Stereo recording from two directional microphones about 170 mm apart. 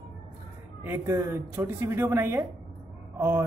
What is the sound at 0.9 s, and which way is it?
Speech, 15° right (ahead or behind).